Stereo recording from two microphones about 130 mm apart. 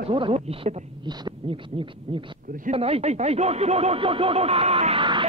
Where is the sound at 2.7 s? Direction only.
50° right (ahead or behind).